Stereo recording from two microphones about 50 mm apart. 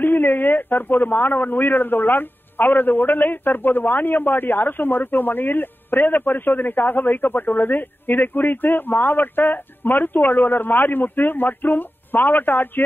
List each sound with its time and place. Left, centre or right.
0.0 s a man's voice: left